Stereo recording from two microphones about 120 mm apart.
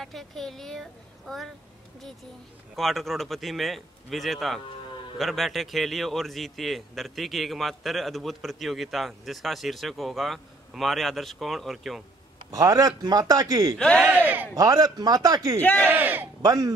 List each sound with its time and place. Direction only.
0.0 s a man's voice: centre (ahead or behind)
2.7 s a man's voice: centre (ahead or behind)
12.4 s a man's voice: 30° right (ahead or behind)
13.7 s speech: 10° left (ahead or behind)
14.0 s a sound: 15° right (ahead or behind)
14.5 s a man's voice: 30° right (ahead or behind)
15.6 s speech: 10° left (ahead or behind)
15.9 s a sound: 15° right (ahead or behind)
16.4 s speech: 30° right (ahead or behind)